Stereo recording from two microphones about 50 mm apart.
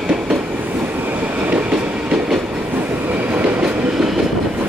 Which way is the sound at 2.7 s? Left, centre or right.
Right.